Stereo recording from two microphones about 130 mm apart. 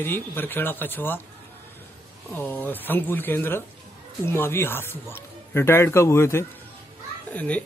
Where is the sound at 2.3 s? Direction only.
15° left (ahead or behind).